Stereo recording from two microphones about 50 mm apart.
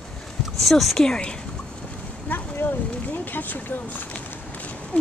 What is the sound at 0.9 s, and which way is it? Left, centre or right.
Speech, centre.